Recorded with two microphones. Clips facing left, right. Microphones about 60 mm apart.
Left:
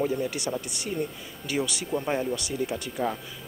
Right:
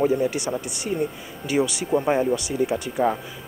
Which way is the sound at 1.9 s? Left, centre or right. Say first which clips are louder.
Right 7 dB; right.